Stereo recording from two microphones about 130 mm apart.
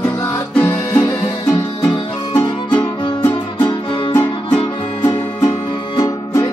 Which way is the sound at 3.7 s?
35° left (ahead or behind).